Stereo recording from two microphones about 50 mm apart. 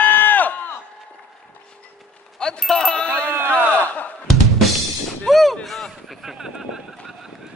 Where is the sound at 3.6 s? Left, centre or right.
Left.